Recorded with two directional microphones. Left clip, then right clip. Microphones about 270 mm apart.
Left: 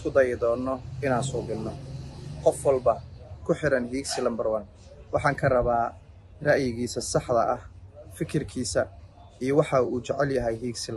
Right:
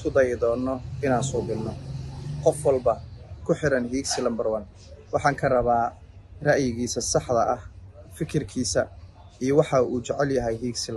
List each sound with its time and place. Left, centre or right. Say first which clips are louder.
0.1 s speech: right 1 dB; centre
2.4 s speech: right 1 dB; centre